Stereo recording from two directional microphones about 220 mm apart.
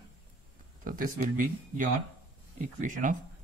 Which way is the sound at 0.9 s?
35° right (ahead or behind).